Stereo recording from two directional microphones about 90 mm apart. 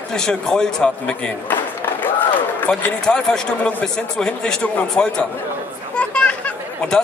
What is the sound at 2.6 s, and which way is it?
Speech, 15° left (ahead or behind).